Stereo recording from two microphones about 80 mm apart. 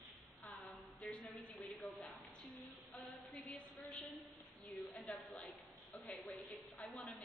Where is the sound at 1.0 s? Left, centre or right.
Centre.